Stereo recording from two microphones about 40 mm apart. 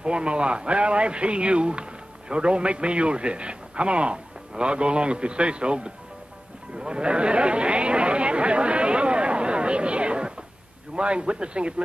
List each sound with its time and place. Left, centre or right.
0.0 s a man's voice: right
6.8 s chatter: right
11.0 s a man's voice: right